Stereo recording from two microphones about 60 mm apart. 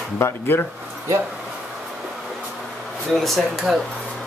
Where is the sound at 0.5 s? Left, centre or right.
Left.